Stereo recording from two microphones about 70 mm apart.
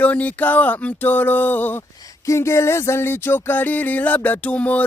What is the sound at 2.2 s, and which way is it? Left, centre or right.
Speech, left.